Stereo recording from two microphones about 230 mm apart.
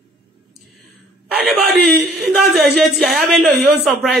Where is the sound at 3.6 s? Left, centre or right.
Right.